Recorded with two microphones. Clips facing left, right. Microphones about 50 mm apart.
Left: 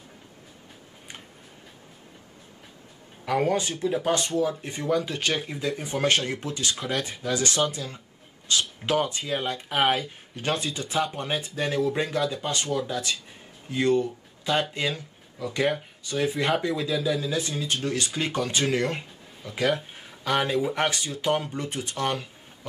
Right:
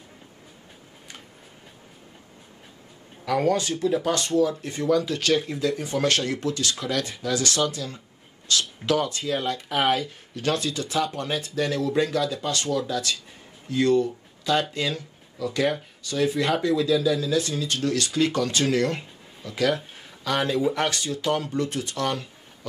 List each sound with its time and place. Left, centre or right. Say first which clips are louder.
3.3 s speech: right 2 dB; centre